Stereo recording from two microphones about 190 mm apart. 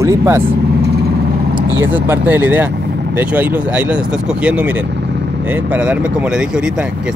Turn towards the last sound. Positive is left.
turn(degrees=-5)  # may be behind; listen again after turning